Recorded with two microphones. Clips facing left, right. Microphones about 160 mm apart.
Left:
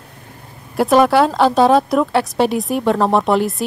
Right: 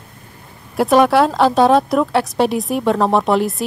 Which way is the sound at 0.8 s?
Centre (ahead or behind).